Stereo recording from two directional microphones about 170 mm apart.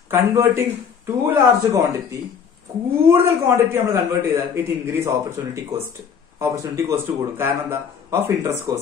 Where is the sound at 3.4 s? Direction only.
15° right (ahead or behind).